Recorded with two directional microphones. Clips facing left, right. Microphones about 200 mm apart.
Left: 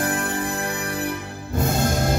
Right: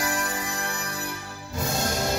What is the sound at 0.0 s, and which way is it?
Music, 55° left (ahead or behind).